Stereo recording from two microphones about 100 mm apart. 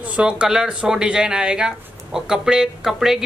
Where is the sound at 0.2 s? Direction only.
10° right (ahead or behind).